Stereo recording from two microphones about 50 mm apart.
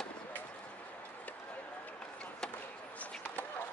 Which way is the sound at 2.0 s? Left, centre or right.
Centre.